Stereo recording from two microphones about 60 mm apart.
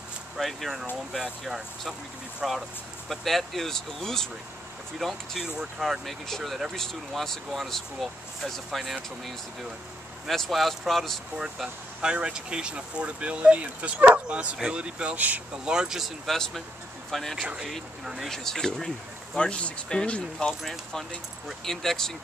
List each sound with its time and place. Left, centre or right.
0.4 s speech: centre
11.3 s speech: centre
15.6 s speech: centre
16.3 s speech: centre
17.4 s speech: centre
17.6 s speech: centre